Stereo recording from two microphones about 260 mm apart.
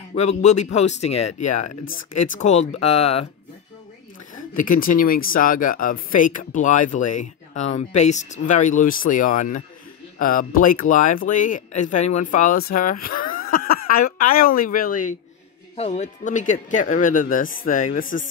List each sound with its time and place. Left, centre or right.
0.4 s speech: left
4.6 s speech: left
13.6 s a sound: left
14.3 s speech: left